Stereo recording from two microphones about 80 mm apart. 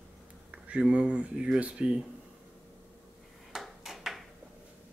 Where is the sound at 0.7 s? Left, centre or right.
Centre.